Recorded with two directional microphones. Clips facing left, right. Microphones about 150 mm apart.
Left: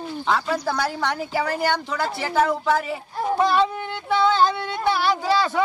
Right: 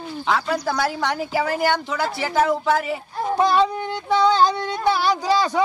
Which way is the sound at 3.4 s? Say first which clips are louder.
Right 3 dB; 40° right (ahead or behind).